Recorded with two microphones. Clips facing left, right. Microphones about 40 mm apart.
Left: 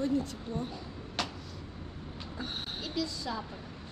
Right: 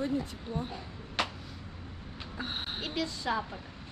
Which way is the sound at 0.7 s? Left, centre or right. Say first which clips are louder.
Even; right.